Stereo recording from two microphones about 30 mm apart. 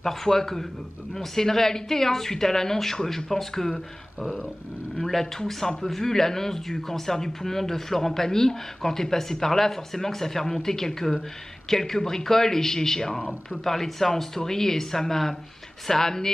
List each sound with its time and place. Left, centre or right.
0.0 s speech: centre